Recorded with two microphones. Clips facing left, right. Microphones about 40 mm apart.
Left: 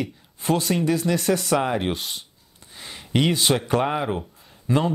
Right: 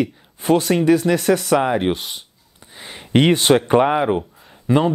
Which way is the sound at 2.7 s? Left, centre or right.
Right.